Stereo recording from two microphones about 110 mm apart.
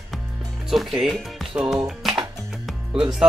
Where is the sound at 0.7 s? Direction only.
Centre (ahead or behind).